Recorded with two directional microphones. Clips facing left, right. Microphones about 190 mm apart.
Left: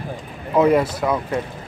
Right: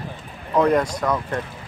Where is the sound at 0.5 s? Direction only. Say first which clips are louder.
Left 2 dB; 5° left (ahead or behind).